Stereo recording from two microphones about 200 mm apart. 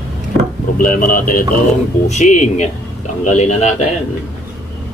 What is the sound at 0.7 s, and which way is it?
Speech, 45° left (ahead or behind).